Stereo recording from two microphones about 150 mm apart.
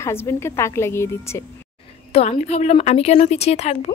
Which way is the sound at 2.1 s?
45° left (ahead or behind).